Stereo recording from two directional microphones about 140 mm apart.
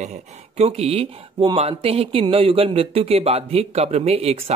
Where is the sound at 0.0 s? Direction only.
55° right (ahead or behind).